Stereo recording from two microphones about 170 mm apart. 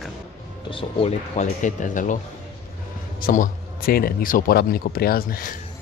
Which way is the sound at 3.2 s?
55° left (ahead or behind).